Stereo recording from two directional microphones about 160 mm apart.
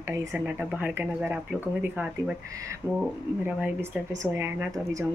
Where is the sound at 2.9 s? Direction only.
5° right (ahead or behind).